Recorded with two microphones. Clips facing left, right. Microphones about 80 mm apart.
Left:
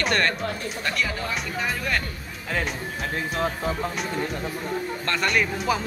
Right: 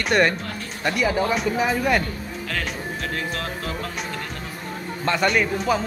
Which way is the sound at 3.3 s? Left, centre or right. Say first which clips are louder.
Left 3 dB; centre.